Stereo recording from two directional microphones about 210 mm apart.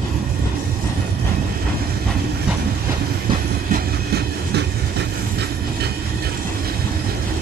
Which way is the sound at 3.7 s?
50° right (ahead or behind).